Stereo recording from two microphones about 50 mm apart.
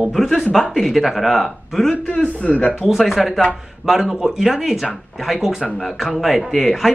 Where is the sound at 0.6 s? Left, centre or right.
Centre.